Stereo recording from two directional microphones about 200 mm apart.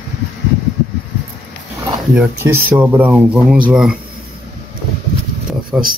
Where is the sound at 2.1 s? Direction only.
10° right (ahead or behind).